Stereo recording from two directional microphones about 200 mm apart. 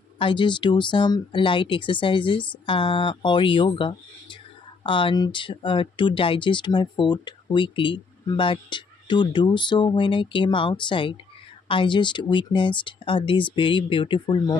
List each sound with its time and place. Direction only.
0.2 s speech: 25° left (ahead or behind)